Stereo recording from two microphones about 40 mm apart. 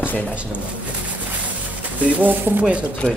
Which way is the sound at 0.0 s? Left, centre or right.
Left.